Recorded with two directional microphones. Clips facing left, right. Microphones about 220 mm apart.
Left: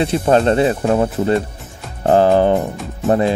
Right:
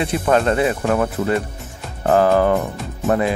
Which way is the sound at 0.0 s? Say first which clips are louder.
Left 3 dB; 30° left (ahead or behind).